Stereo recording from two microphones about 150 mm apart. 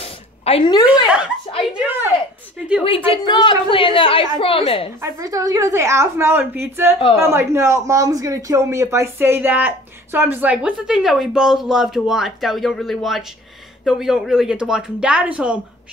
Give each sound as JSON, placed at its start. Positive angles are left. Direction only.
{"t": 0.0, "sound": "a sound", "side_deg": 40}
{"t": 1.7, "sound": "speech", "side_deg": -10}
{"t": 2.8, "sound": "a woman's voice", "side_deg": 40}
{"t": 5.0, "sound": "speech", "side_deg": -25}